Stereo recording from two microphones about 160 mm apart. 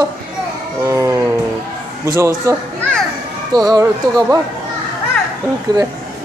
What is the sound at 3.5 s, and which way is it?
Speech, 25° right (ahead or behind).